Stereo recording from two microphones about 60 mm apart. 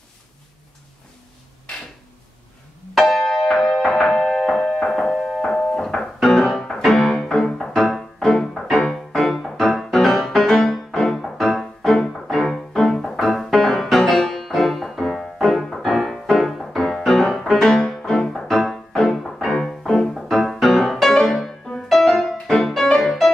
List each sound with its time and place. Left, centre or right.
2.9 s music: centre